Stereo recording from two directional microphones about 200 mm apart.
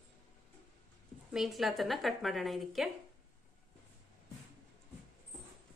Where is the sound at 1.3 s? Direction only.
Centre (ahead or behind).